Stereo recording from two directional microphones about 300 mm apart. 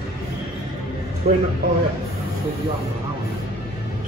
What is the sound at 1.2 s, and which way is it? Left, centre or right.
Speech, right.